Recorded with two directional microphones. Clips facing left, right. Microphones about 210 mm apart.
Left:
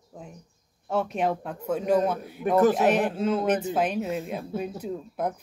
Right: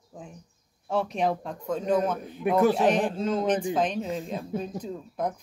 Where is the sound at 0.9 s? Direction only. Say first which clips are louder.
Even; centre (ahead or behind).